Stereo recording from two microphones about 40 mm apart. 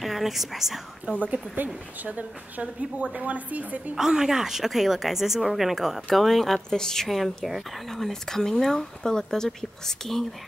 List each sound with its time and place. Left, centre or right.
0.0 s speech: centre
1.2 s a woman's voice: right
3.9 s speech: centre
7.1 s speech: centre
8.1 s speech: centre